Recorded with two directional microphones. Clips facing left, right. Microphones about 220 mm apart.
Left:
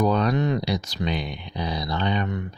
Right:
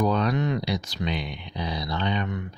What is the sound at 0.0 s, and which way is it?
Speech, 40° left (ahead or behind).